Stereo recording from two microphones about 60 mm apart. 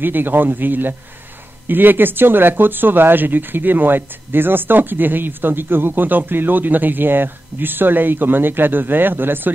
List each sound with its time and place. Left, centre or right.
0.0 s speech: right